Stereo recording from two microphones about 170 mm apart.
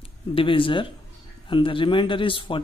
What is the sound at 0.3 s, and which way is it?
A man's voice, 30° left (ahead or behind).